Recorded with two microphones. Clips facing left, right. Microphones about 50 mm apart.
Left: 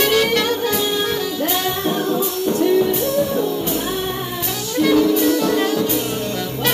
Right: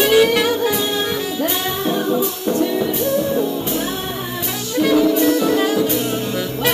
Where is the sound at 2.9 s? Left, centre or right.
Centre.